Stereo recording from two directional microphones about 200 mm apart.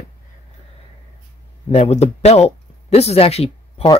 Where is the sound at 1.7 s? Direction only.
35° left (ahead or behind).